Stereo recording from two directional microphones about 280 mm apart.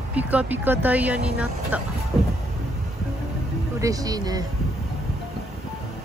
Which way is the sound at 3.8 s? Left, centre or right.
Centre.